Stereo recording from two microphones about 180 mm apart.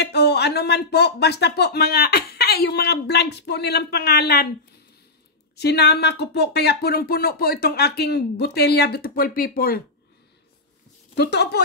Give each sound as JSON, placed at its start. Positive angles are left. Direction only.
{"t": 0.0, "sound": "speech", "side_deg": 65}
{"t": 5.6, "sound": "speech", "side_deg": 65}
{"t": 11.1, "sound": "speech", "side_deg": 65}